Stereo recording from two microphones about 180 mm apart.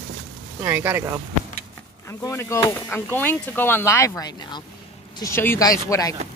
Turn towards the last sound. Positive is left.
turn(degrees=20)  # may be behind; listen again after turning